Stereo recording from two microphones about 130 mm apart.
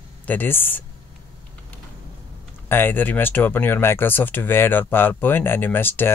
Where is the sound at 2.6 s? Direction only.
15° left (ahead or behind).